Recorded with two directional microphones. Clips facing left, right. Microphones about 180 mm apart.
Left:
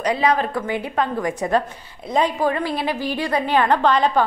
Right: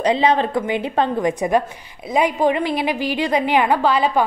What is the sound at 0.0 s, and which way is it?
A woman's voice, 25° right (ahead or behind).